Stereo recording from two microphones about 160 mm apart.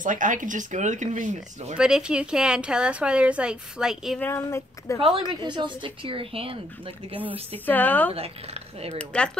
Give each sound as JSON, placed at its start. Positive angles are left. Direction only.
{"t": 0.0, "sound": "speech", "side_deg": -55}
{"t": 1.8, "sound": "a woman's voice", "side_deg": -5}
{"t": 4.2, "sound": "speech", "side_deg": 15}
{"t": 4.9, "sound": "a woman's voice", "side_deg": -35}
{"t": 7.5, "sound": "speech", "side_deg": 10}